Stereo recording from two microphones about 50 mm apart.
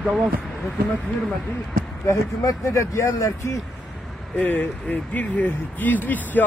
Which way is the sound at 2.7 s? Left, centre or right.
Left.